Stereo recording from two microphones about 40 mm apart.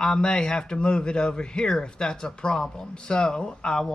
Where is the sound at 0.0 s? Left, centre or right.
Centre.